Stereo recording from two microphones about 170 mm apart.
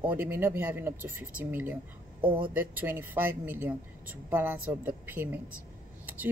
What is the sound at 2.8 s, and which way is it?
Speech, 10° right (ahead or behind).